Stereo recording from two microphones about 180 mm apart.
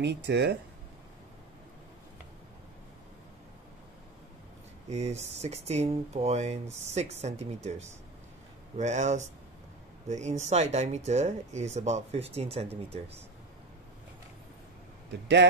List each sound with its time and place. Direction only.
0.0 s speech: 70° right (ahead or behind)
4.8 s speech: 40° right (ahead or behind)
8.7 s speech: 40° right (ahead or behind)